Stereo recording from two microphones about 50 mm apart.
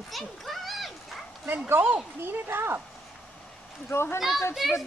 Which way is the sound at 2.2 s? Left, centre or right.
Right.